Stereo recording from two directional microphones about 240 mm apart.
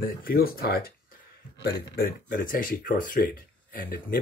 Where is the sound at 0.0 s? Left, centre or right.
Left.